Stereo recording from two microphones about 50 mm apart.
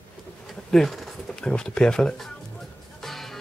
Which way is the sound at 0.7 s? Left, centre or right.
Centre.